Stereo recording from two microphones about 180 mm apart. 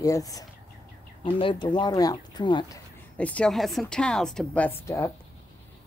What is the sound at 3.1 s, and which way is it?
A woman's voice, 5° left (ahead or behind).